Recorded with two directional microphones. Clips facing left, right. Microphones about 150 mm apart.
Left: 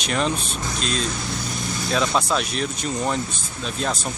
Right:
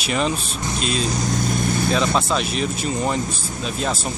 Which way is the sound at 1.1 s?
40° right (ahead or behind).